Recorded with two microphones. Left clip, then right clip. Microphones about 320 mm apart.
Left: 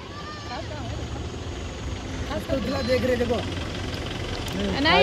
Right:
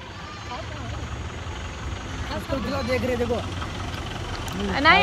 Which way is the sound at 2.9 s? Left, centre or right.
Centre.